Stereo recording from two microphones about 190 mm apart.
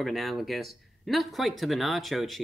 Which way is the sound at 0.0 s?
Centre (ahead or behind).